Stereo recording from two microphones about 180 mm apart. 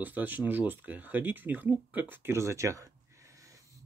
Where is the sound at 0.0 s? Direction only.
10° right (ahead or behind).